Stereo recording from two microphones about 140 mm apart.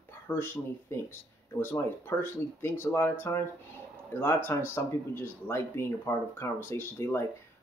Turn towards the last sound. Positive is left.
turn(degrees=20)  # may be behind; listen again after turning